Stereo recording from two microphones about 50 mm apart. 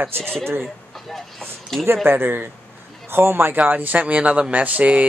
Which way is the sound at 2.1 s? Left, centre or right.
Right.